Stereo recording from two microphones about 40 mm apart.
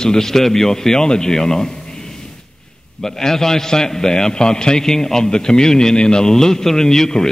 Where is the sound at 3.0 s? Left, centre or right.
Centre.